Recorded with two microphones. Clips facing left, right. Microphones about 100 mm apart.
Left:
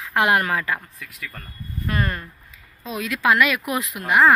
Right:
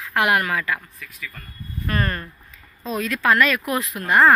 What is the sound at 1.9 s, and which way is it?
Speech, 5° left (ahead or behind).